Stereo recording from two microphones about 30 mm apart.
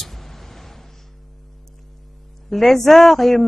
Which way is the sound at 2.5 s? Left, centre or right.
Centre.